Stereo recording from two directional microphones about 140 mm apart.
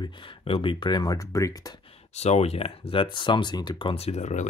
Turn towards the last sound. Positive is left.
turn(degrees=55)  # may be behind; listen again after turning